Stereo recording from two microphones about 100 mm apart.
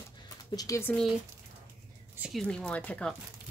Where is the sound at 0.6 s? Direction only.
35° left (ahead or behind).